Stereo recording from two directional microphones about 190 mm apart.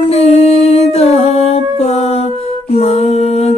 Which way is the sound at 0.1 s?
30° left (ahead or behind).